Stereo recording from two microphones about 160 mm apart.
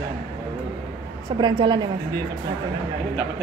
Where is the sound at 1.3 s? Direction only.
30° right (ahead or behind).